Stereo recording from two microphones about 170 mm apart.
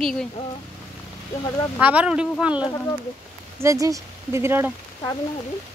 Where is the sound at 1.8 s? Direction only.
10° right (ahead or behind).